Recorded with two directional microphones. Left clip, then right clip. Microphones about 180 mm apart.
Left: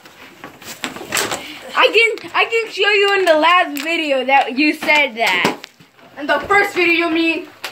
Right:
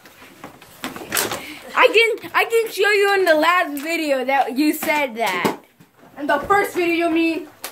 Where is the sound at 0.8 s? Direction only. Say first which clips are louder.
Left 4 dB; 10° left (ahead or behind).